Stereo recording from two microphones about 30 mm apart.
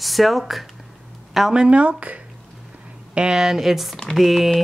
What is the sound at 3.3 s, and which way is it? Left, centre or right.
Speech, centre.